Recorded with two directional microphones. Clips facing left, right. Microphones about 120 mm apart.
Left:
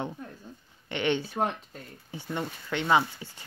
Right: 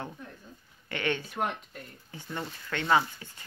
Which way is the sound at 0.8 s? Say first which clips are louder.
Left 4 dB; 20° left (ahead or behind).